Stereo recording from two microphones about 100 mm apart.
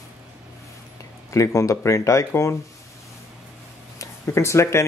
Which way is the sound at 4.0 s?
30° left (ahead or behind).